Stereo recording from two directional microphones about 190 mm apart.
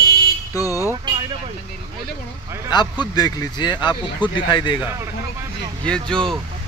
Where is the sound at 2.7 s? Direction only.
25° left (ahead or behind).